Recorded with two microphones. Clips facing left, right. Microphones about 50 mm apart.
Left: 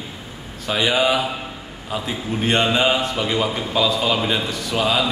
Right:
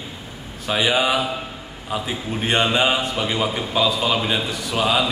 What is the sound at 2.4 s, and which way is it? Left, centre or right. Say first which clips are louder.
A man's voice: left 1 dB; centre.